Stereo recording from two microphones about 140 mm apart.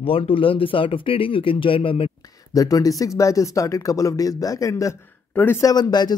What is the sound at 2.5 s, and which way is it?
Speech, 25° left (ahead or behind).